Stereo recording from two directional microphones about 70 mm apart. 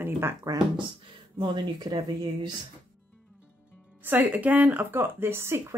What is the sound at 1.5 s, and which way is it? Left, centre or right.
Speech, right.